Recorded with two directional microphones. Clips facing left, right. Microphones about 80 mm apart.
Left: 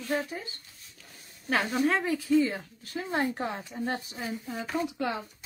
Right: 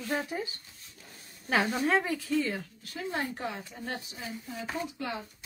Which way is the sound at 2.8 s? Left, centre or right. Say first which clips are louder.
Left 8 dB; left.